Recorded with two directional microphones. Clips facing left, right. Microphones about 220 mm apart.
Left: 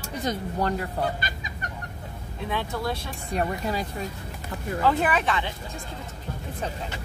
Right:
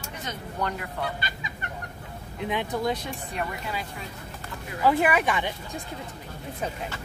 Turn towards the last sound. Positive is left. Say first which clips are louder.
# right 1 dB
turn(degrees=-15)  # may be behind; listen again after turning